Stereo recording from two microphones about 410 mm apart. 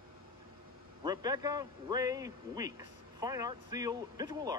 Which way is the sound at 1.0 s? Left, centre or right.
Centre.